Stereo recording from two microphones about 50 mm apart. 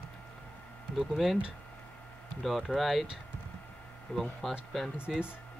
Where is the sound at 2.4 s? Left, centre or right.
Centre.